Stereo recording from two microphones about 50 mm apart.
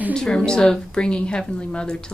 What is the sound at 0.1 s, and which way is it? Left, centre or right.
Speech, centre.